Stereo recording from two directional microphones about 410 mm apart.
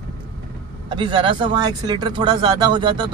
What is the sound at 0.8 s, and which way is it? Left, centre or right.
Speech, centre.